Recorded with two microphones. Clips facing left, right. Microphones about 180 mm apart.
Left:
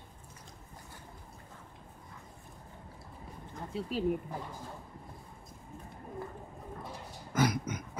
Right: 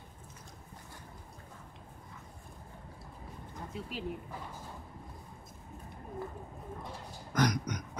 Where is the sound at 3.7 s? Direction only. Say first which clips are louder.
Left 8 dB; 40° left (ahead or behind).